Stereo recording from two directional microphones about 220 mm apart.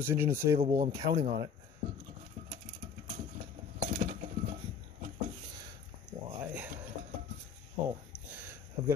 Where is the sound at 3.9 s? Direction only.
30° right (ahead or behind).